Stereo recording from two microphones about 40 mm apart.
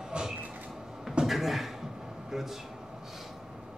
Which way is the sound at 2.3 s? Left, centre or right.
Centre.